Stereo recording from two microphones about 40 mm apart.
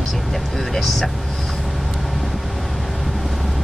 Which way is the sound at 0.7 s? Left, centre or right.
Centre.